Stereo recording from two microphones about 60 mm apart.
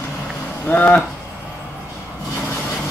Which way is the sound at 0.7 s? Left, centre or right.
Left.